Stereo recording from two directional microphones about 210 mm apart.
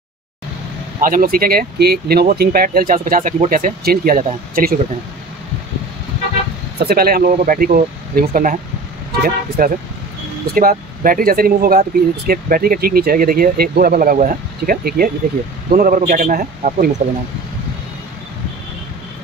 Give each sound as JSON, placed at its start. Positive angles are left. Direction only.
{"t": 1.0, "sound": "speech", "side_deg": -40}
{"t": 6.8, "sound": "speech", "side_deg": -45}
{"t": 9.6, "sound": "speech", "side_deg": -45}